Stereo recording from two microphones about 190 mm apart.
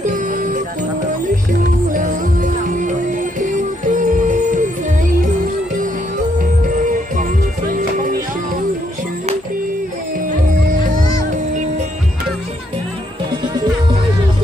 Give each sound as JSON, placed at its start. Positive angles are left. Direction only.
{"t": 0.0, "sound": "music", "side_deg": -45}
{"t": 1.9, "sound": "music", "side_deg": -45}
{"t": 6.6, "sound": "music", "side_deg": -45}
{"t": 10.7, "sound": "music", "side_deg": -45}
{"t": 13.6, "sound": "music", "side_deg": -20}